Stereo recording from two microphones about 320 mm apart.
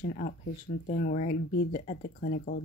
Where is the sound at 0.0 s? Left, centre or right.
Left.